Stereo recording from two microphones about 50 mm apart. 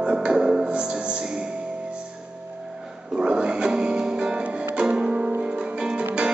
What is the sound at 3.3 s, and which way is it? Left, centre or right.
Music, centre.